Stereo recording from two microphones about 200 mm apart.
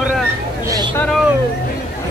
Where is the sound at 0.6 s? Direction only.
20° right (ahead or behind).